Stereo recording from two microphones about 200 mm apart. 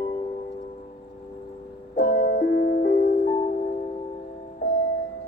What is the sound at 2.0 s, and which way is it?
Music, 50° left (ahead or behind).